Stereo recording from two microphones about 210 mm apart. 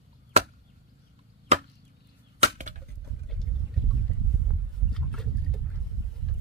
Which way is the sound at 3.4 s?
5° left (ahead or behind).